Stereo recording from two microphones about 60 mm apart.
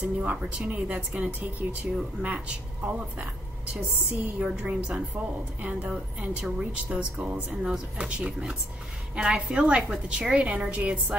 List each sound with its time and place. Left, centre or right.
0.2 s a woman's voice: centre